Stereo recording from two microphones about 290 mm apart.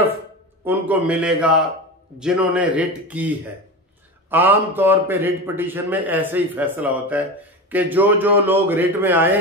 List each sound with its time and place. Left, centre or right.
0.7 s speech: centre
4.3 s a man's voice: centre